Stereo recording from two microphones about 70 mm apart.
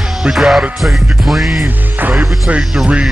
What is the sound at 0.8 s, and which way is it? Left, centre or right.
Music, centre.